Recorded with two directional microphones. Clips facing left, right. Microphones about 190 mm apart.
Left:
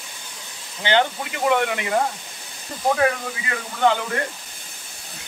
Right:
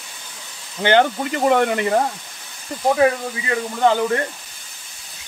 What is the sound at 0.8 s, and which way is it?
Speech, 45° right (ahead or behind).